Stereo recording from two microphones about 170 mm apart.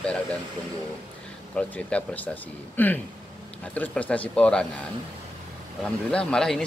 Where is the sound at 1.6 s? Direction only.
5° left (ahead or behind).